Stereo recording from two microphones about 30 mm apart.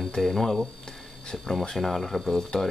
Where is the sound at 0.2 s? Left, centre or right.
Centre.